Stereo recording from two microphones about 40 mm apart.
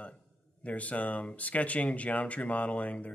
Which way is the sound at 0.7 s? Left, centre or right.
Left.